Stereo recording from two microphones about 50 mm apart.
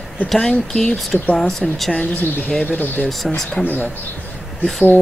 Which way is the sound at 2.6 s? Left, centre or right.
Left.